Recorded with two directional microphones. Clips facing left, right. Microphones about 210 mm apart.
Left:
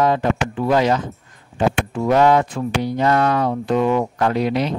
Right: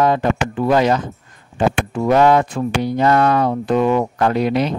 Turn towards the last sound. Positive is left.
turn(degrees=-55)  # may be behind; listen again after turning